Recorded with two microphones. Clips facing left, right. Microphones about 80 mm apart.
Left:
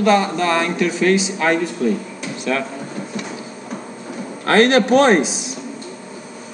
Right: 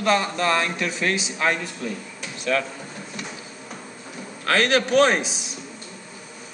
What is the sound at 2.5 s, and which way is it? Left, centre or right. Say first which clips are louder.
Speech: left 2 dB; centre.